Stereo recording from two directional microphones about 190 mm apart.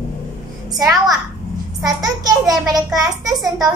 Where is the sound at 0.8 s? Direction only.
20° right (ahead or behind).